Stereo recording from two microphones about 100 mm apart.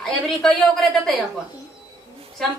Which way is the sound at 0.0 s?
5° left (ahead or behind).